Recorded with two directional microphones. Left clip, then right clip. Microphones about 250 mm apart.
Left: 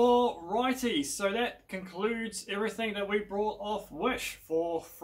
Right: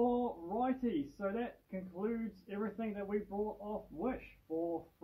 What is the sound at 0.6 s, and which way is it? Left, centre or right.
Speech, centre.